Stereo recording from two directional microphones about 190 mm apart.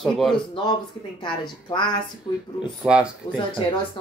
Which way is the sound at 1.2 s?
25° left (ahead or behind).